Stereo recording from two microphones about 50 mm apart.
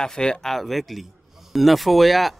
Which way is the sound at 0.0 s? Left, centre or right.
Centre.